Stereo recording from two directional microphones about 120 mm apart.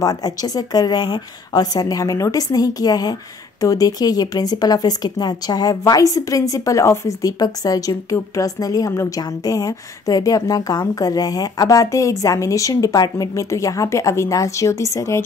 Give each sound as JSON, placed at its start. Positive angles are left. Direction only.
{"t": 0.0, "sound": "a woman's voice", "side_deg": 30}